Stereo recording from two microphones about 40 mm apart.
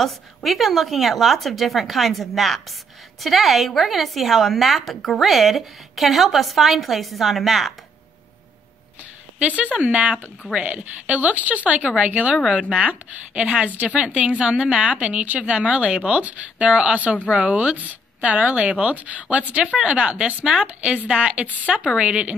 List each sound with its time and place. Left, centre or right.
0.0 s a woman's voice: centre
9.4 s a woman's voice: right
10.8 s a woman's voice: right
21.5 s a woman's voice: right
21.9 s speech: right